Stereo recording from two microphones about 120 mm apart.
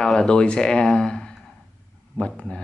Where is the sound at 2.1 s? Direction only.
5° left (ahead or behind).